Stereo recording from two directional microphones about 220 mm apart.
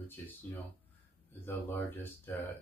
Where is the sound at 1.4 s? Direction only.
10° left (ahead or behind).